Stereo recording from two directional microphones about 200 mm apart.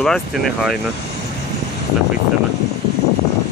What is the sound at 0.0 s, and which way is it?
Speech, centre (ahead or behind).